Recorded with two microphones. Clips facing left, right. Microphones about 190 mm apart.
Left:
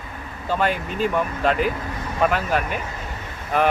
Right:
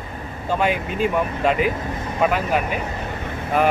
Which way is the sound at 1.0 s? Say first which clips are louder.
Right 1 dB; 5° right (ahead or behind).